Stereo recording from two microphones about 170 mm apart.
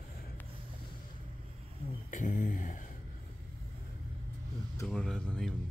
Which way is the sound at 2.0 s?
50° left (ahead or behind).